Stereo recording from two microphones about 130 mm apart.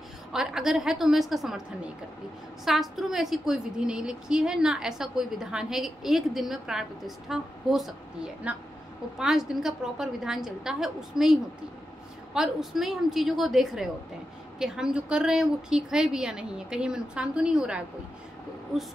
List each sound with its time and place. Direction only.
0.3 s a woman's voice: 5° right (ahead or behind)
2.6 s a woman's voice: centre (ahead or behind)
12.4 s a woman's voice: 5° right (ahead or behind)